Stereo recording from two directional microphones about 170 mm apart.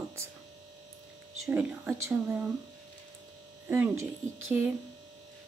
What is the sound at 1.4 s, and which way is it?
Speech, 10° right (ahead or behind).